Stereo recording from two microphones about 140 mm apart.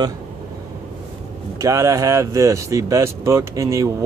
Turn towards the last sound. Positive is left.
turn(degrees=-20)  # may be behind; listen again after turning